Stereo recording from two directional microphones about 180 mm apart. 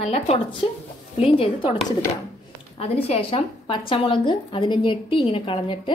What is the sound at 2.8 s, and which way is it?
A woman's voice, 35° left (ahead or behind).